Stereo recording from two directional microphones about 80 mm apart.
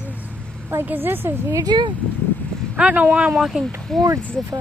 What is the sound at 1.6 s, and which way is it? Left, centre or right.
Speech, right.